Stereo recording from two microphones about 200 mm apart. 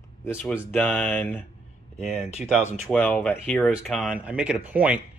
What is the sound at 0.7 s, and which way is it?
Speech, 10° left (ahead or behind).